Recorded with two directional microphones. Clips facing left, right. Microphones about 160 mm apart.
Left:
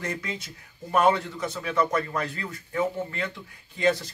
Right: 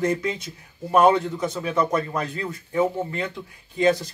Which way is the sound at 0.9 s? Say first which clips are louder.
Right 5 dB; 20° right (ahead or behind).